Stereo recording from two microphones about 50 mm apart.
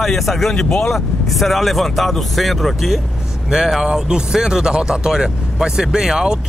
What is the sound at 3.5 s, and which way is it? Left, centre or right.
Speech, centre.